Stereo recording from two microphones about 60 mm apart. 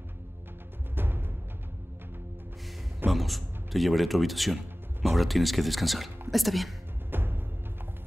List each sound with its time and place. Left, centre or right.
0.9 s music: right
3.1 s a man's voice: centre
7.1 s music: right